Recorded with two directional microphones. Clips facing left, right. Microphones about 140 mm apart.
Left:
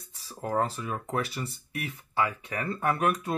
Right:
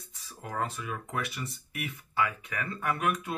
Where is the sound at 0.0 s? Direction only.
35° left (ahead or behind).